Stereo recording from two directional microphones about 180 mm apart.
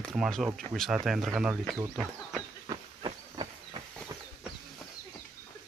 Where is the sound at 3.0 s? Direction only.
25° right (ahead or behind).